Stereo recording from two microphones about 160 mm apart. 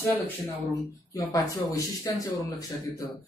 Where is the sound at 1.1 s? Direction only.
20° left (ahead or behind).